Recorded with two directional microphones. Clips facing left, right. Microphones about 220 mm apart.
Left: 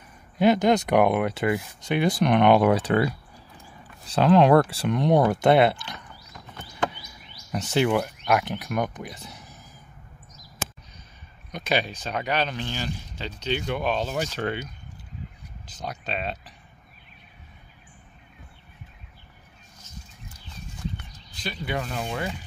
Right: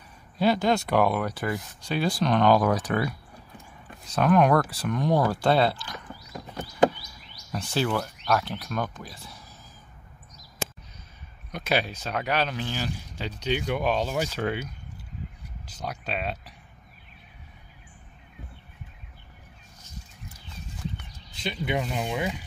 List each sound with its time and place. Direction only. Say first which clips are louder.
0.4 s speech: left 4 dB; 20° left (ahead or behind)
7.5 s speech: left 4 dB; 20° left (ahead or behind)
11.5 s speech: left 1 dB; 5° right (ahead or behind)
21.4 s speech: right 2 dB; 20° right (ahead or behind)